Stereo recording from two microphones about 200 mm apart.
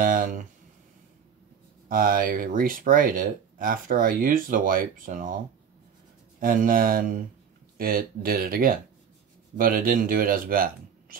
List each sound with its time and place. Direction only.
0.0 s a sound: 40° right (ahead or behind)
1.9 s speech: 40° right (ahead or behind)
6.4 s speech: 45° right (ahead or behind)